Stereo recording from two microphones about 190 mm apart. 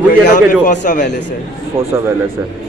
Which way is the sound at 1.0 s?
65° left (ahead or behind).